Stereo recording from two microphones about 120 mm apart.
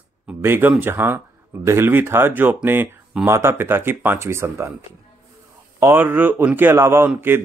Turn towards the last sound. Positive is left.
turn(degrees=-15)  # may be behind; listen again after turning